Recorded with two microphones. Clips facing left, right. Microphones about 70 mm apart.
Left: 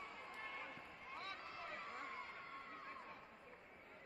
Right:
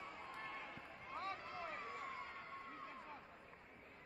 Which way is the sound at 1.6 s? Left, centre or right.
Centre.